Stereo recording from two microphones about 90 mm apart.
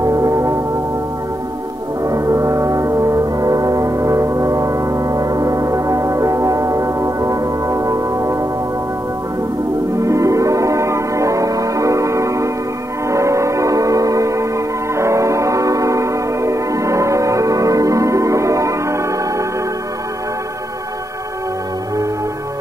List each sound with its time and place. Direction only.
0.0 s music: 40° right (ahead or behind)
2.0 s brass instrument: 35° right (ahead or behind)
9.9 s music: 35° right (ahead or behind)
13.1 s gong: 35° right (ahead or behind)
15.0 s music: 35° right (ahead or behind)